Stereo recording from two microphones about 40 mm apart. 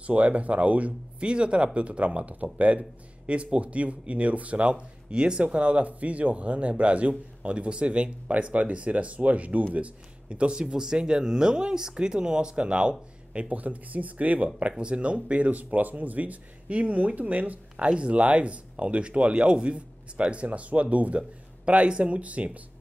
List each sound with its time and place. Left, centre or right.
0.0 s speech: right
14.8 s speech: right